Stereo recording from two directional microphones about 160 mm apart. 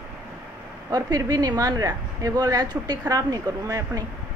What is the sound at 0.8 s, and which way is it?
A woman's voice, 25° right (ahead or behind).